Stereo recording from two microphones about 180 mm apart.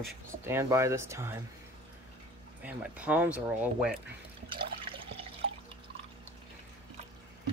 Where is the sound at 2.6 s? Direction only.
10° right (ahead or behind).